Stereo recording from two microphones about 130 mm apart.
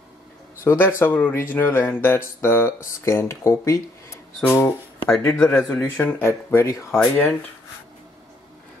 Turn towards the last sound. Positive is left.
turn(degrees=15)  # may be behind; listen again after turning